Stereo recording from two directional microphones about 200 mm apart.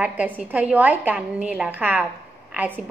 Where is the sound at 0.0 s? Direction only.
5° right (ahead or behind).